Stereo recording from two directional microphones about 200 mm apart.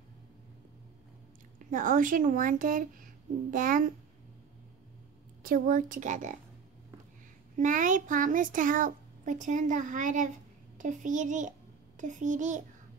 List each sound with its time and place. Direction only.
1.6 s speech: 40° right (ahead or behind)
5.4 s a child's voice: 45° right (ahead or behind)
7.5 s a child's voice: 40° right (ahead or behind)